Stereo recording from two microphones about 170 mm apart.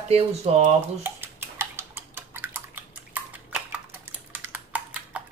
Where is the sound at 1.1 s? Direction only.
15° right (ahead or behind).